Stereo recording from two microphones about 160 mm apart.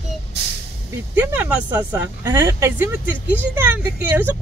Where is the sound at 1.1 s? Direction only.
10° right (ahead or behind).